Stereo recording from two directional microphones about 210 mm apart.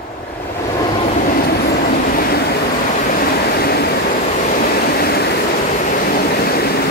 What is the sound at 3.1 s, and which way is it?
Vehicle, 45° left (ahead or behind).